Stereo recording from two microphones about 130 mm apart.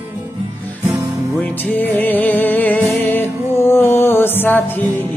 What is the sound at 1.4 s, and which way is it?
Music, 15° left (ahead or behind).